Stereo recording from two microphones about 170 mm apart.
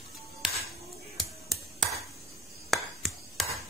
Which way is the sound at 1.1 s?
Centre (ahead or behind).